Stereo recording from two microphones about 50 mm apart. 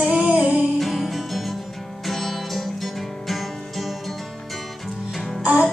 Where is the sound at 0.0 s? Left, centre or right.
Centre.